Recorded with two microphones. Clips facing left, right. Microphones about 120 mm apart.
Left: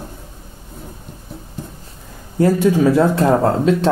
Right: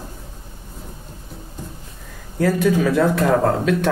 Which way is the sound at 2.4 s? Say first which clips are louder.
Left 4 dB; 25° left (ahead or behind).